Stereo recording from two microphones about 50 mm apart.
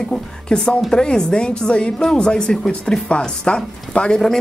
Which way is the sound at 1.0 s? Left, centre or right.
Centre.